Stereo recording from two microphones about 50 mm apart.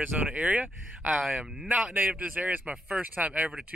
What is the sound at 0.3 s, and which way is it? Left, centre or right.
Speech, right.